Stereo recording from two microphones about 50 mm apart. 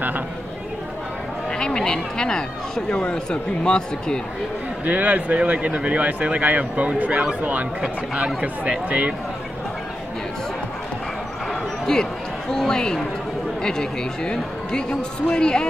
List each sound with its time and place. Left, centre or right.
1.6 s speech: centre
4.8 s speech: right
11.8 s basketball bounce: centre
13.6 s speech: centre